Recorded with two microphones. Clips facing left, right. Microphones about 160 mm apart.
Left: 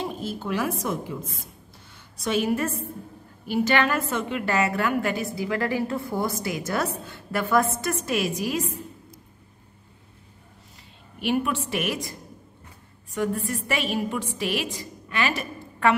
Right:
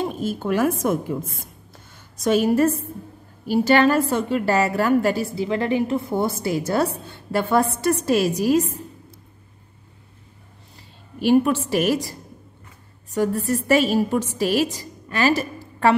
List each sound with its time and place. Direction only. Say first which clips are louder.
0.0 s a woman's voice: right 5 dB; 50° right (ahead or behind)
2.1 s a woman's voice: right 6 dB; 45° right (ahead or behind)
11.1 s a woman's voice: right 8 dB; 35° right (ahead or behind)